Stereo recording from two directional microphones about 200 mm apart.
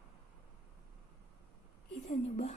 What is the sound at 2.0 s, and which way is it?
Speech, 35° left (ahead or behind).